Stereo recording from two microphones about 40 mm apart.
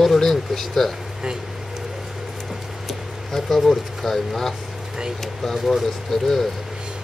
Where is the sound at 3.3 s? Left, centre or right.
Centre.